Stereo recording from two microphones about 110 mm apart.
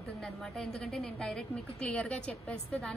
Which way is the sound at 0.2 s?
5° left (ahead or behind).